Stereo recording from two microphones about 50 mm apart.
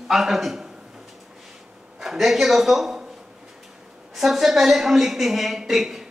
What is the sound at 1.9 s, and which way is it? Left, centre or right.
A man's voice, centre.